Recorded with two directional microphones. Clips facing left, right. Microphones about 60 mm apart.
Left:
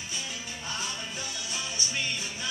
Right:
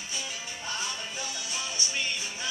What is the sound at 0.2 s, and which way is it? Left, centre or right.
Music, centre.